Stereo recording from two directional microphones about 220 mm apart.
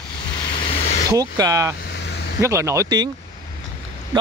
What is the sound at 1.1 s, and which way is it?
Speech, 15° right (ahead or behind).